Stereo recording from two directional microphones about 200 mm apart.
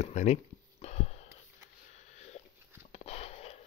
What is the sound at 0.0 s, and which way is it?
Speech, 35° left (ahead or behind).